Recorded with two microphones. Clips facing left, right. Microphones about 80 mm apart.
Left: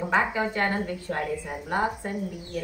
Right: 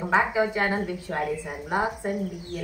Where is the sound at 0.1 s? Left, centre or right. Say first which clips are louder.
Right 3 dB; centre.